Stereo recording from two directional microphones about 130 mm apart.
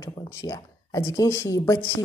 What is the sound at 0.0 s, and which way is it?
A woman's voice, 25° left (ahead or behind).